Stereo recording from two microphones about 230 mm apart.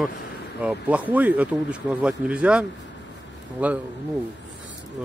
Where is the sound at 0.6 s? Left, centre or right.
Centre.